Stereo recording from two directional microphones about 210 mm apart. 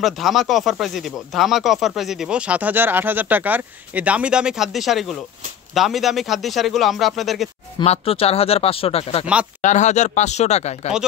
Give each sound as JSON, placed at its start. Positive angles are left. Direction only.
{"t": 0.0, "sound": "speech", "side_deg": 0}
{"t": 7.8, "sound": "speech", "side_deg": 30}